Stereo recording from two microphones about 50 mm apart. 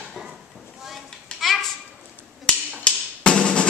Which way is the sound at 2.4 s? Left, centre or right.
Centre.